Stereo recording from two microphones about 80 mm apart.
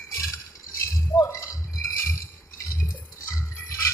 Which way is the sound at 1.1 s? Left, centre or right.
Left.